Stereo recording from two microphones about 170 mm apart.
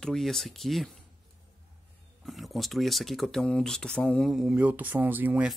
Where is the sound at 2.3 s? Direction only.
Centre (ahead or behind).